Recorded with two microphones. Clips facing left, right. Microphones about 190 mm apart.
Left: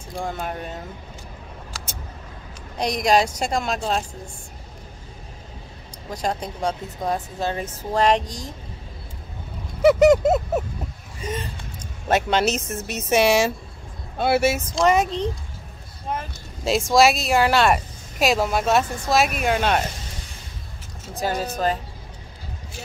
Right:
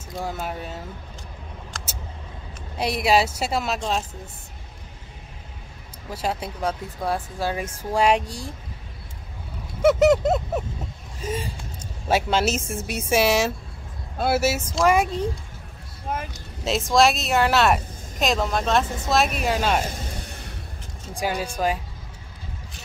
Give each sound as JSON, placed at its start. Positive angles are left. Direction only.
{"t": 0.2, "sound": "speech", "side_deg": -5}
{"t": 1.7, "sound": "vehicle", "side_deg": 5}
{"t": 2.8, "sound": "speech", "side_deg": -5}
{"t": 6.0, "sound": "speech", "side_deg": -5}
{"t": 9.8, "sound": "speech", "side_deg": 0}
{"t": 11.1, "sound": "gasp", "side_deg": -5}
{"t": 12.1, "sound": "speech", "side_deg": -5}
{"t": 20.2, "sound": "a sound", "side_deg": -65}
{"t": 21.1, "sound": "speech", "side_deg": -10}